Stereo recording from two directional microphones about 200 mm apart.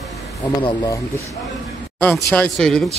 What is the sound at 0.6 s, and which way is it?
Speech, 20° left (ahead or behind).